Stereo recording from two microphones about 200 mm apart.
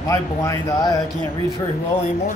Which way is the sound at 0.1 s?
15° left (ahead or behind).